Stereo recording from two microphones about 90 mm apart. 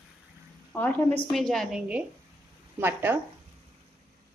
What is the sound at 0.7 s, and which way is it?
Speech, 15° left (ahead or behind).